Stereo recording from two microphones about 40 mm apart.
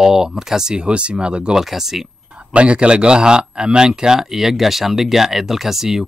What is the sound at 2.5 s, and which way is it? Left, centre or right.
A man's voice, right.